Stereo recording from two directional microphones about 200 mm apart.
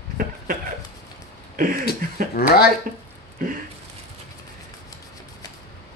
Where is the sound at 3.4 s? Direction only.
45° right (ahead or behind).